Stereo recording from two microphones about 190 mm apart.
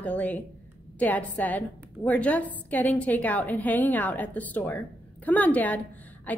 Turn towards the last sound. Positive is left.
turn(degrees=10)  # may be behind; listen again after turning